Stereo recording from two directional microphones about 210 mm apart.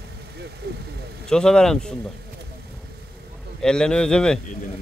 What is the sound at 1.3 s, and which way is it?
Speech, 5° left (ahead or behind).